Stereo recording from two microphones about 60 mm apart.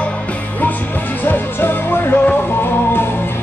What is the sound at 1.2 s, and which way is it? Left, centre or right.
Music, left.